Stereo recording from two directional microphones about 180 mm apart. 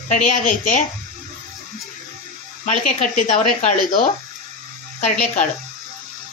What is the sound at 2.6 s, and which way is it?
Speech, 45° left (ahead or behind).